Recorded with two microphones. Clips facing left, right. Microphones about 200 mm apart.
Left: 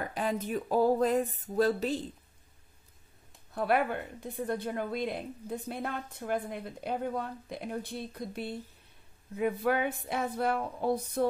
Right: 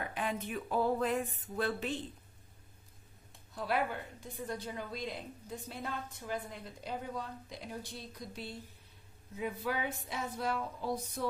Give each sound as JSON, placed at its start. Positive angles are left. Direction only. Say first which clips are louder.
{"t": 0.0, "sound": "speech", "louder": "left 5 dB", "side_deg": 40}
{"t": 3.5, "sound": "a woman's voice", "louder": "left 6 dB", "side_deg": 60}